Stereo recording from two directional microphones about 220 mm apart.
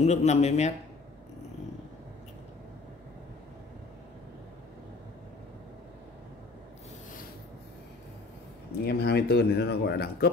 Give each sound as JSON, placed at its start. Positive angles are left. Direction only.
{"t": 0.0, "sound": "a man's voice", "side_deg": 30}
{"t": 8.8, "sound": "speech", "side_deg": 45}